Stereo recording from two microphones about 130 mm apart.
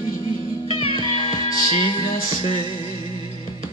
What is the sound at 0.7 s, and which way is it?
Music, 45° left (ahead or behind).